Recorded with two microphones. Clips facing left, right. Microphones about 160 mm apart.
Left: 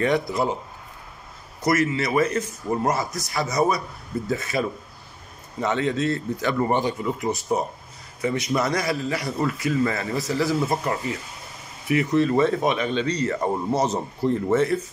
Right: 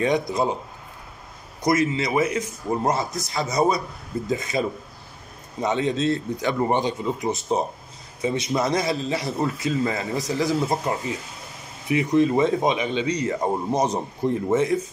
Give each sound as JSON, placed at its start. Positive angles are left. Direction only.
{"t": 0.3, "sound": "a man's voice", "side_deg": -20}
{"t": 1.6, "sound": "a man's voice", "side_deg": -15}